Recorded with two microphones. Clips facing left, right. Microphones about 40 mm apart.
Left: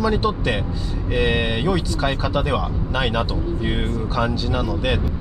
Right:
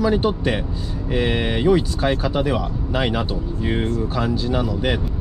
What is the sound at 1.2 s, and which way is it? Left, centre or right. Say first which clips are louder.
Speech: right 1 dB; centre.